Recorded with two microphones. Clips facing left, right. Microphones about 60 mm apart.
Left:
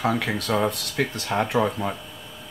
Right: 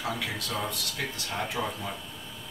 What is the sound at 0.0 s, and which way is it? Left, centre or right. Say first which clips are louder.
Speech: left 8 dB; left.